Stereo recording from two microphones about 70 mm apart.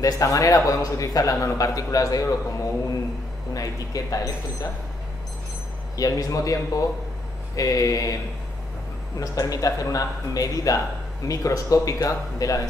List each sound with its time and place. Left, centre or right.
0.0 s a man's voice: left
3.5 s a man's voice: left
5.9 s a man's voice: left
9.2 s a man's voice: left